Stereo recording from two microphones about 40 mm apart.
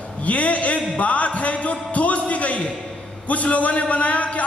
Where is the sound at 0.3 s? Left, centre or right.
Left.